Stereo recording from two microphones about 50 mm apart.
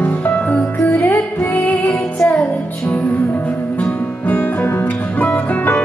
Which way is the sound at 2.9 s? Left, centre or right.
Left.